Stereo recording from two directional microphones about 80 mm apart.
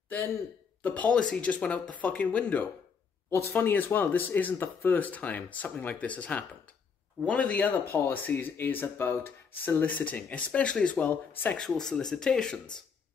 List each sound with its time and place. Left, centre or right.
0.1 s speech: left
11.5 s speech: centre